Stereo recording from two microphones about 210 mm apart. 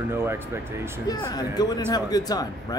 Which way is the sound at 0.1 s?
10° right (ahead or behind).